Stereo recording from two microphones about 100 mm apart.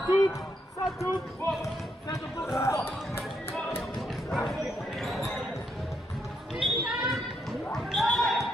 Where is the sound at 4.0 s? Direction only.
Centre (ahead or behind).